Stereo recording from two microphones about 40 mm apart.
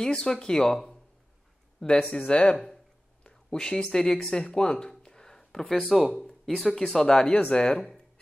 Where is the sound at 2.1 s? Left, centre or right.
Left.